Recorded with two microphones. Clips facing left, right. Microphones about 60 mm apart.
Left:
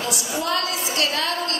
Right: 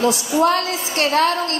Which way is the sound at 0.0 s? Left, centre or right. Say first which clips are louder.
Right 10 dB; right.